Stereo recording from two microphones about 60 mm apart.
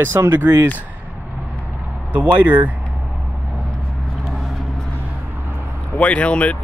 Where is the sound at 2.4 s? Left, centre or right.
Right.